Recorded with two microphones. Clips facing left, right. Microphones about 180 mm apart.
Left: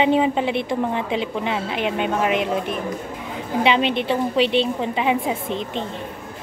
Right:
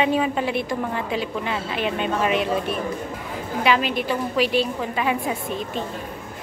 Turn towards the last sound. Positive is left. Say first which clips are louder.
# left 2 dB
turn(degrees=20)  # may be behind; listen again after turning